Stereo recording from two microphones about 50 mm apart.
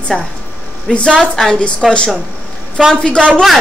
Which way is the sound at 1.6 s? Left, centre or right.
Centre.